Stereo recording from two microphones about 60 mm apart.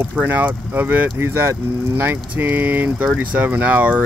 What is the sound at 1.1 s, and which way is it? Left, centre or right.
Speech, right.